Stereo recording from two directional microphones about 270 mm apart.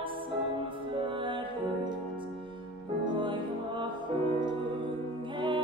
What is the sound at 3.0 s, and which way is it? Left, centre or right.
Music, centre.